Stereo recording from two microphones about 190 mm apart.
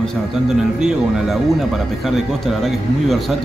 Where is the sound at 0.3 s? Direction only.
5° right (ahead or behind).